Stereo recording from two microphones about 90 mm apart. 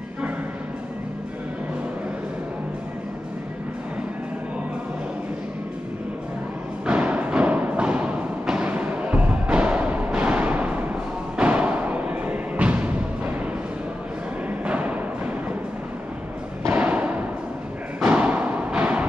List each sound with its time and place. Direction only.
6.9 s music: 15° right (ahead or behind)
14.6 s music: 15° right (ahead or behind)
16.7 s thump: 15° right (ahead or behind)
18.0 s timpani: 15° right (ahead or behind)